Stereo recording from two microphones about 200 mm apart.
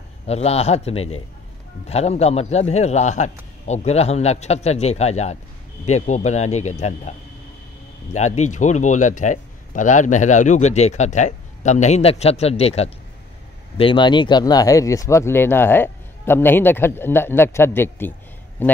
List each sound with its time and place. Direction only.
0.3 s speech: 30° left (ahead or behind); by 18.7 s 10° left (ahead or behind)